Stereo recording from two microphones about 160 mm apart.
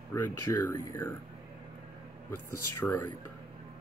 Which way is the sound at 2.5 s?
15° left (ahead or behind).